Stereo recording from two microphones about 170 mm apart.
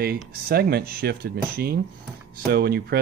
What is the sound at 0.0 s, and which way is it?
Speech, 65° right (ahead or behind).